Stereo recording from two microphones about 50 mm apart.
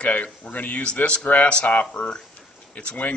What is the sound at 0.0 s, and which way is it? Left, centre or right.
Speech, left.